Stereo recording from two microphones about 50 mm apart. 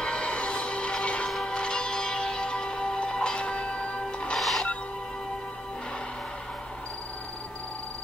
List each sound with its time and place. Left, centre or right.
0.0 s music: left
4.4 s music: centre